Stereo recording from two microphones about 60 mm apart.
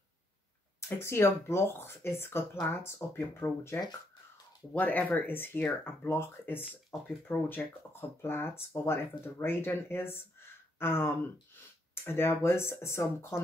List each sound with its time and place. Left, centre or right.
0.7 s speech: left
4.7 s speech: left
6.9 s speech: centre
7.2 s speech: left